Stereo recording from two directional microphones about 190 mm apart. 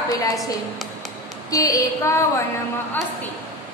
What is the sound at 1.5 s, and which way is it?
Speech, 20° left (ahead or behind).